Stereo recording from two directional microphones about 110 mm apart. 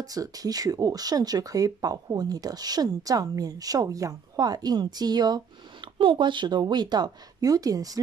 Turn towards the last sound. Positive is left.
turn(degrees=-35)  # may be behind; listen again after turning